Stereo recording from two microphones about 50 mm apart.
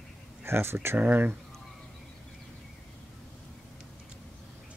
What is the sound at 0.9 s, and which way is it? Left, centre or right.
Speech, right.